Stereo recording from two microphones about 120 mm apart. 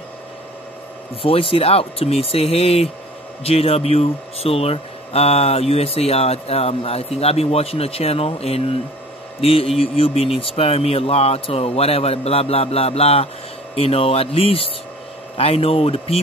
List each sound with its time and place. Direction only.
1.2 s speech: 50° left (ahead or behind)